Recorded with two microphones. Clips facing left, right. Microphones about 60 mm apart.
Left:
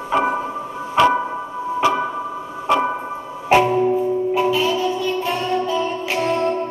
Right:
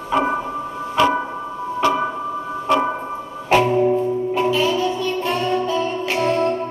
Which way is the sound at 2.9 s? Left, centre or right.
Centre.